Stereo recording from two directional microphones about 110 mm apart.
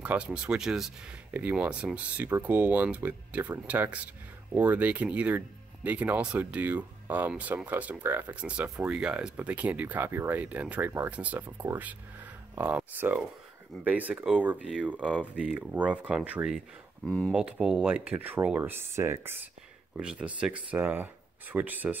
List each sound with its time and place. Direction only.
0.0 s speech: 10° right (ahead or behind)
20.0 s speech: 10° right (ahead or behind)